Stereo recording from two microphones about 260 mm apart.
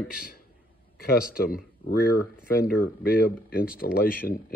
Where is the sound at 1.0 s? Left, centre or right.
Left.